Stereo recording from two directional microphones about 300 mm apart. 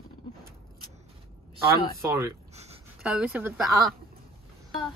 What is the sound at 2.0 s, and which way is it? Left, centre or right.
Speech, centre.